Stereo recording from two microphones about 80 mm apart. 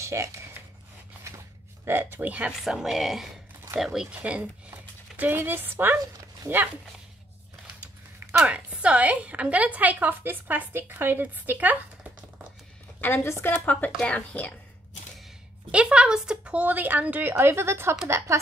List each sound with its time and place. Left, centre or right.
0.0 s speech: right
1.9 s a woman's voice: right
2.6 s a woman's voice: centre
4.1 s speech: centre
8.5 s a woman's voice: centre
13.0 s a woman's voice: left
15.7 s speech: centre
16.6 s a woman's voice: right